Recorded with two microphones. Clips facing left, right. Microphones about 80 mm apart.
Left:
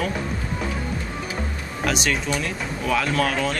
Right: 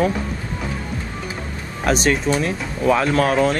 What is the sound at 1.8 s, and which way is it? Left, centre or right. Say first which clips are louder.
Speech: right 6 dB; right.